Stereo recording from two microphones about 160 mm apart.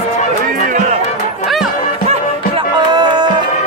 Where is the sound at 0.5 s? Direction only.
55° right (ahead or behind).